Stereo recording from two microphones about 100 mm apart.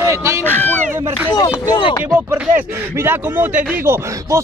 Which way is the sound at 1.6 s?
50° left (ahead or behind).